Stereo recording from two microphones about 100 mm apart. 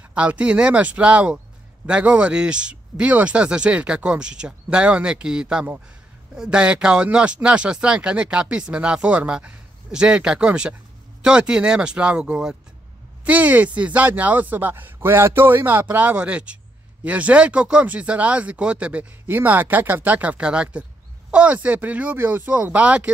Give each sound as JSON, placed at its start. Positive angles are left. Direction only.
{"t": 0.1, "sound": "speech", "side_deg": -10}